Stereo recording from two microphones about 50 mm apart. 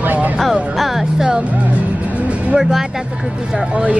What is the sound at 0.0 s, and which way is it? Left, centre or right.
Music, right.